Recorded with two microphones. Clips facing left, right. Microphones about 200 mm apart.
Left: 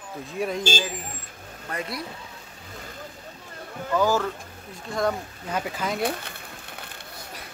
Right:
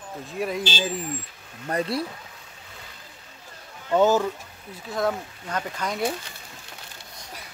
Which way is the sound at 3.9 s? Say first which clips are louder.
Right 3 dB; 25° right (ahead or behind).